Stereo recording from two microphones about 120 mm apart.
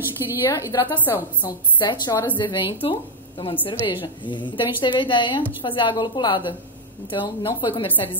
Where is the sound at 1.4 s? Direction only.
35° left (ahead or behind).